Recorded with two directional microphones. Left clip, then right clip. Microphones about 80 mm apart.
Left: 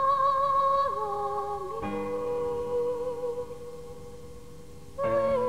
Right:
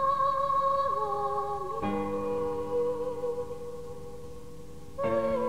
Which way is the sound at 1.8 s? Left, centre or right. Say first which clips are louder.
Right 1 dB; right.